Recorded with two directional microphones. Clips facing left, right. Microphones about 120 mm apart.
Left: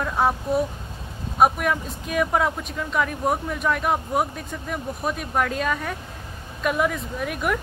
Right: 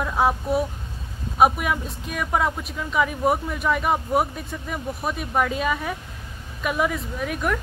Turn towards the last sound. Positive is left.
turn(degrees=0)  # may be behind; listen again after turning